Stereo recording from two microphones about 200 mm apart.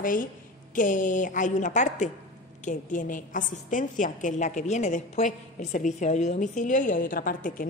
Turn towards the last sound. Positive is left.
turn(degrees=45)  # may be behind; listen again after turning